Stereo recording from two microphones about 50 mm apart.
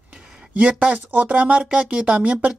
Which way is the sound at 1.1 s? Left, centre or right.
Right.